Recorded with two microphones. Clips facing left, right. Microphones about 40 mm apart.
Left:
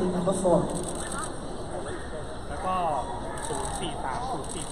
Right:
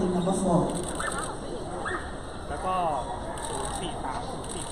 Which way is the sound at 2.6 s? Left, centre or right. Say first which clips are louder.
Even; centre.